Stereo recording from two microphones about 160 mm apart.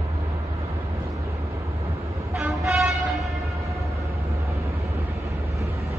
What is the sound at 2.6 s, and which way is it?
Vehicle, centre (ahead or behind).